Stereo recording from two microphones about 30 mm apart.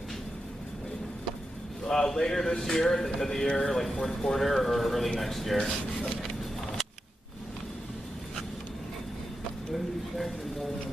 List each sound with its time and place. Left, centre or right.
1.9 s speech: centre
5.6 s speech: centre